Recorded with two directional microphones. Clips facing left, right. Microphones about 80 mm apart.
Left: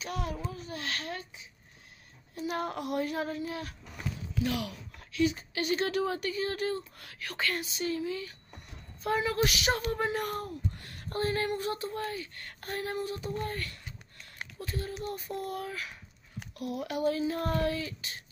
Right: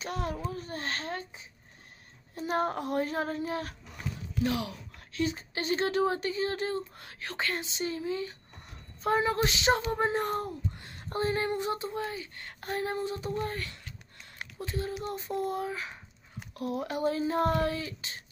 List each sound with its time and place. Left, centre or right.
0.0 s a child's voice: right